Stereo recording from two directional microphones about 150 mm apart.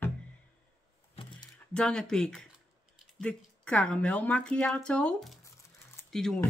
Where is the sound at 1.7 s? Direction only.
5° left (ahead or behind).